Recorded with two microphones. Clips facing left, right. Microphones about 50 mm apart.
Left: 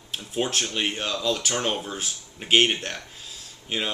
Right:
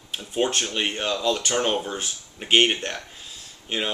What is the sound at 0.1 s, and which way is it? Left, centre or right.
Speech, centre.